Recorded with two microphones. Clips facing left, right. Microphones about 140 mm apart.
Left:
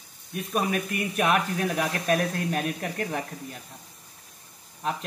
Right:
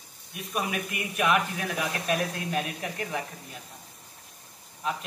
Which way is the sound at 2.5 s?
5° right (ahead or behind).